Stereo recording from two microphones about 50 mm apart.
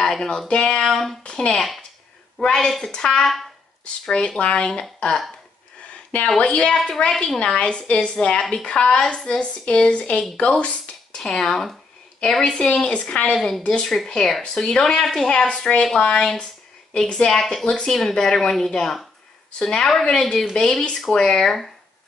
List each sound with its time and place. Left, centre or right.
0.0 s speech: centre
0.5 s a woman's voice: centre
4.4 s a woman's voice: left
4.6 s speech: centre
6.2 s a woman's voice: centre
13.3 s speech: centre
13.6 s a woman's voice: centre
13.8 s speech: centre
20.6 s a woman's voice: left
21.1 s speech: centre